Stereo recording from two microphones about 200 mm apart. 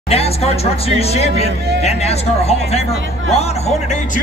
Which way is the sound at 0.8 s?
30° left (ahead or behind).